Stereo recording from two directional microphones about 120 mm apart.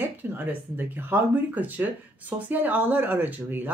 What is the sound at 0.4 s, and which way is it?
Speech, 15° right (ahead or behind).